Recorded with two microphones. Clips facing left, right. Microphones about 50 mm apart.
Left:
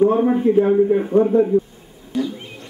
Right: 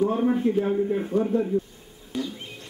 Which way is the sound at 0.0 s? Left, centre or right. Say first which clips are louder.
Left 7 dB; left.